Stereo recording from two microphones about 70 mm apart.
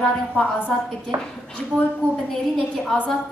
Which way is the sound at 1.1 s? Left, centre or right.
Right.